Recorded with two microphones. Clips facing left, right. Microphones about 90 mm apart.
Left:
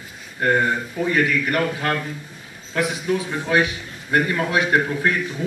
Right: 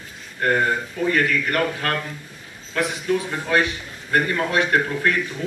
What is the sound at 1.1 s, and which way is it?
Speech, 10° left (ahead or behind).